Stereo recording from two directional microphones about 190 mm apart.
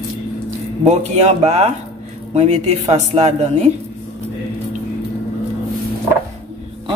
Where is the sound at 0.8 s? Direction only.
35° right (ahead or behind).